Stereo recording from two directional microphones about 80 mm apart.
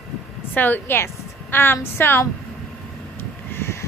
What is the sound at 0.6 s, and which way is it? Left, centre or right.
A woman's voice, left.